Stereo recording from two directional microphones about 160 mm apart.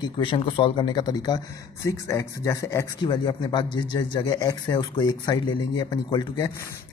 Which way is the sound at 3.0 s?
30° left (ahead or behind).